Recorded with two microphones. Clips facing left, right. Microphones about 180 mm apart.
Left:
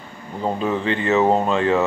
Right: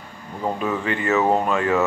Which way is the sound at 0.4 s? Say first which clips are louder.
Left 2 dB; 25° left (ahead or behind).